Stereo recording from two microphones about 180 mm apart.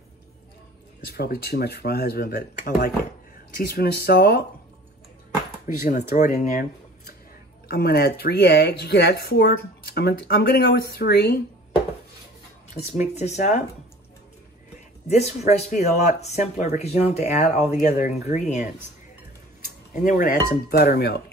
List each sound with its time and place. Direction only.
1.0 s speech: 60° left (ahead or behind)
6.1 s speech: 45° left (ahead or behind)
7.6 s speech: 60° left (ahead or behind)
12.9 s speech: 40° left (ahead or behind)
15.0 s speech: 40° left (ahead or behind); by 21.2 s 60° left (ahead or behind)